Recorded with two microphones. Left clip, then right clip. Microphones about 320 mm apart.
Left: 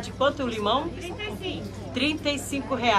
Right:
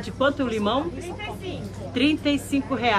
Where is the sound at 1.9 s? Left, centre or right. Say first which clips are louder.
Right 4 dB; centre.